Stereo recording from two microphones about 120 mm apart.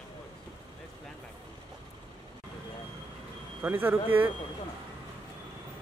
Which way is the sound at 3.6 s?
15° right (ahead or behind).